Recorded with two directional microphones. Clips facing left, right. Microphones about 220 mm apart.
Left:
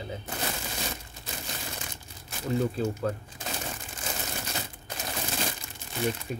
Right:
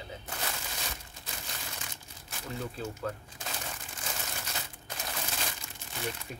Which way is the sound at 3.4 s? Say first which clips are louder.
Left 5 dB; 25° left (ahead or behind).